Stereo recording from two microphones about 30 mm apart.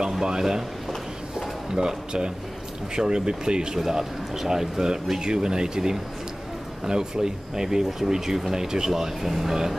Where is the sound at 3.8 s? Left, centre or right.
Centre.